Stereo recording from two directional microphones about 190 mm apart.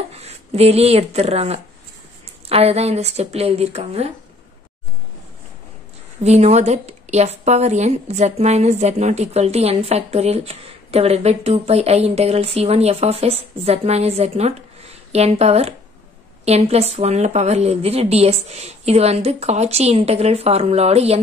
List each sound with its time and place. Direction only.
0.1 s a woman's voice: 35° right (ahead or behind)
6.2 s a woman's voice: 35° right (ahead or behind)